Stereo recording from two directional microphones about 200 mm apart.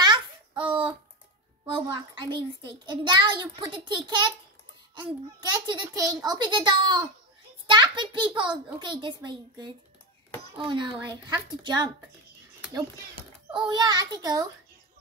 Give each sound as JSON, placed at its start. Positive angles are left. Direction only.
{"t": 0.0, "sound": "a sound", "side_deg": -25}
{"t": 1.9, "sound": "a child's voice", "side_deg": -20}
{"t": 13.5, "sound": "a child's voice", "side_deg": -20}